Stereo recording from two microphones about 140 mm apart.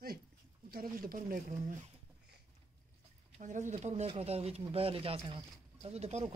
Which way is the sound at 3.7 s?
50° right (ahead or behind).